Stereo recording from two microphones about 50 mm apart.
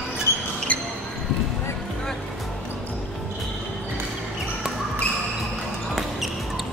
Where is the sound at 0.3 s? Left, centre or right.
Left.